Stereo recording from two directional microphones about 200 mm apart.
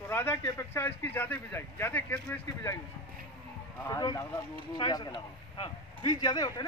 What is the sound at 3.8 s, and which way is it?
A man's voice, 20° left (ahead or behind).